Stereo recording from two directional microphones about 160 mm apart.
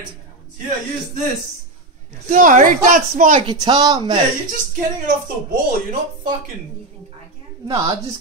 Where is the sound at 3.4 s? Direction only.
30° right (ahead or behind).